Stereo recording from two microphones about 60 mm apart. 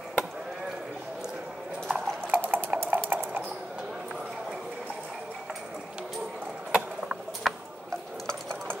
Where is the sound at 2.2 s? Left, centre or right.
Right.